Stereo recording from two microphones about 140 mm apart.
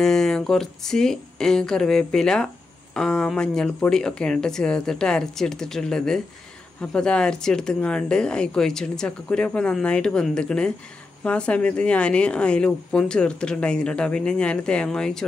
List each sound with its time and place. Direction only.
0.0 s speech: 5° left (ahead or behind)